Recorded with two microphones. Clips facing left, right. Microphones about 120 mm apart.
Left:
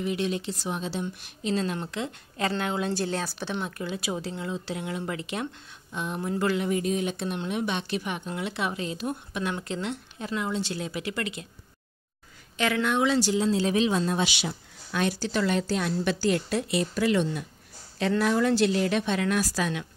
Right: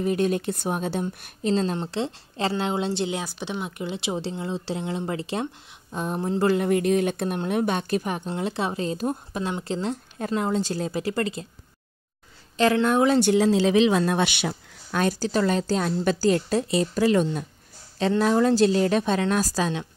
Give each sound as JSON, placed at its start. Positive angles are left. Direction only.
{"t": 0.0, "sound": "speech", "side_deg": -45}
{"t": 6.6, "sound": "speech", "side_deg": -60}
{"t": 10.1, "sound": "speech", "side_deg": -45}
{"t": 12.5, "sound": "speech", "side_deg": -35}